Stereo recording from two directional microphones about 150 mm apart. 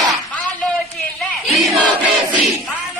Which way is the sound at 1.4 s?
Centre (ahead or behind).